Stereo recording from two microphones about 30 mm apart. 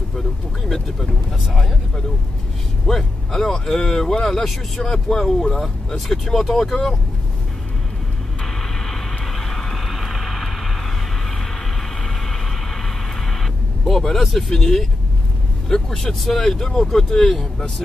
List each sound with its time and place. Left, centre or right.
0.7 s speech: centre
2.9 s speech: centre
8.5 s vehicle: centre
9.8 s vehicle: centre
12.0 s vehicle: centre
13.8 s speech: centre